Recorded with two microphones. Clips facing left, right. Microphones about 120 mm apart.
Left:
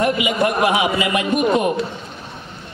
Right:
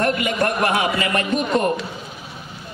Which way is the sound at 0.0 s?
10° left (ahead or behind).